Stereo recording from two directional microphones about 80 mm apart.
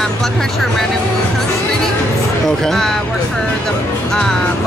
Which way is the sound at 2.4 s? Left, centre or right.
Centre.